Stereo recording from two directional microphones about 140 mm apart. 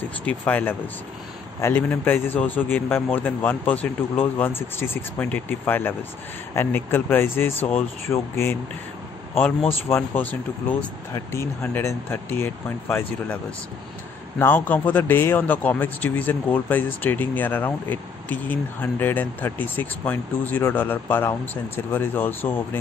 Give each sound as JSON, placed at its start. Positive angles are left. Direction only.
{"t": 0.2, "sound": "speech", "side_deg": 10}
{"t": 9.7, "sound": "speech", "side_deg": 15}
{"t": 14.4, "sound": "speech", "side_deg": 15}